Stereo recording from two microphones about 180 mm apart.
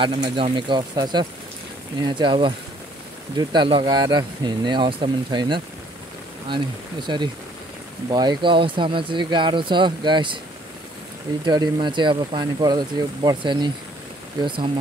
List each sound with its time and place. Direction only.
0.0 s speech: 25° right (ahead or behind)
11.4 s speech: 25° right (ahead or behind)